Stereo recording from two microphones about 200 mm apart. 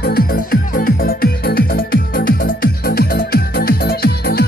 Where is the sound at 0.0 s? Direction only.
50° left (ahead or behind).